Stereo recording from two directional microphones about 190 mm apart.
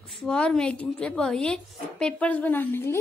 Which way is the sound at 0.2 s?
5° left (ahead or behind).